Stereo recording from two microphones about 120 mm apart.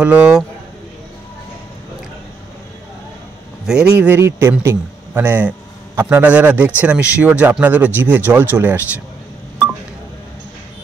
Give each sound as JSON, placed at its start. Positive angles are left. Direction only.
{"t": 0.0, "sound": "speech", "side_deg": -10}
{"t": 3.6, "sound": "speech", "side_deg": -5}
{"t": 4.2, "sound": "speech", "side_deg": -25}